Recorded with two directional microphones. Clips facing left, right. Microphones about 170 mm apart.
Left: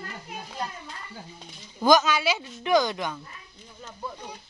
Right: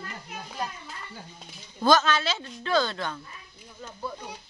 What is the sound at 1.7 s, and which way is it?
Speech, 10° left (ahead or behind).